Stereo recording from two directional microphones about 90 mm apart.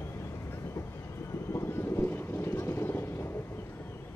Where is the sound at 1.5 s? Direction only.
30° left (ahead or behind).